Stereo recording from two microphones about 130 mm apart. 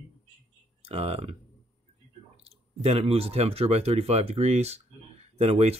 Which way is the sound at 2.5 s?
50° right (ahead or behind).